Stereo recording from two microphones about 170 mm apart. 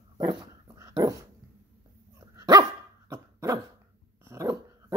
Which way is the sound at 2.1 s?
20° right (ahead or behind).